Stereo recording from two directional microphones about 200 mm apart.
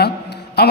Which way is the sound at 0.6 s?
55° left (ahead or behind).